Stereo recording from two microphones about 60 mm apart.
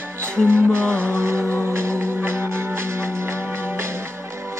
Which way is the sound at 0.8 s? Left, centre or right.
Centre.